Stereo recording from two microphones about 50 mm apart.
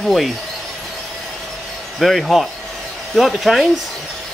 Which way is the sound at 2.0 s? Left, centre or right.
Centre.